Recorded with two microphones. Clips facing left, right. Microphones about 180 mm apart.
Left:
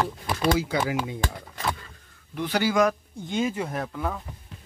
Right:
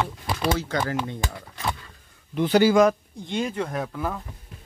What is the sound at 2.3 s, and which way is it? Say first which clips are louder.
Speech: right 6 dB; 30° right (ahead or behind).